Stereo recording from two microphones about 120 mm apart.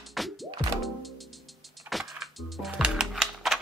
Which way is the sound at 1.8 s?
Centre (ahead or behind).